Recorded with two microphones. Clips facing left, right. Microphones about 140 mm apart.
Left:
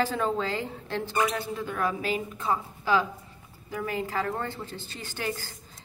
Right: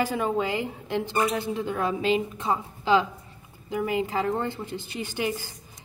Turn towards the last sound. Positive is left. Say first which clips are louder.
# right 4 dB
turn(degrees=-15)  # may be behind; listen again after turning